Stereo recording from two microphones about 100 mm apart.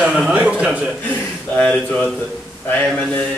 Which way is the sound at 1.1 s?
15° left (ahead or behind).